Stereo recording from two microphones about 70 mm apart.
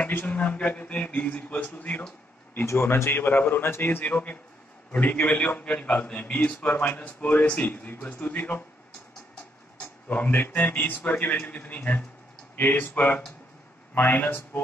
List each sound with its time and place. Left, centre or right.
0.0 s a man's voice: left
2.6 s speech: left
4.0 s a man's voice: centre
9.8 s a man's voice: left